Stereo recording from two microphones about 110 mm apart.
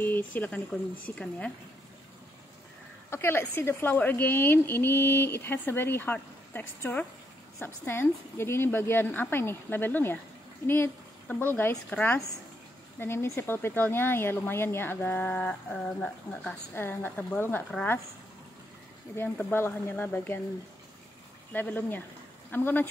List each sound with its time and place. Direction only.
0.0 s speech: 15° left (ahead or behind)
3.1 s a woman's voice: 20° left (ahead or behind)
16.7 s a woman's voice: 20° left (ahead or behind)
19.1 s a woman's voice: 20° left (ahead or behind)
21.5 s speech: 15° left (ahead or behind)